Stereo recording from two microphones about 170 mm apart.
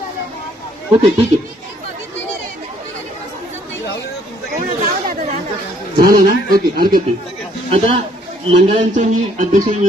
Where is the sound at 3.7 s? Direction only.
90° left.